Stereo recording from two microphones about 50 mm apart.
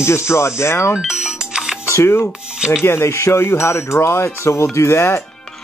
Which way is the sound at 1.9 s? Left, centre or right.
Left.